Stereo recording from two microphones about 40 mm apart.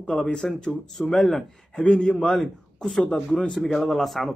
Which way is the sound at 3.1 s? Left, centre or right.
Centre.